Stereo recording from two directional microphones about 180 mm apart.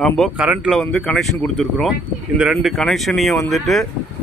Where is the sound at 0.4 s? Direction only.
5° right (ahead or behind).